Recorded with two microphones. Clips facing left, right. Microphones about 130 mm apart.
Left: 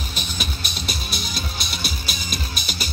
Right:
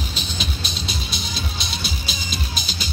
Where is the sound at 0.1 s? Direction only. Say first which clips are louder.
Right 1 dB; 55° left (ahead or behind).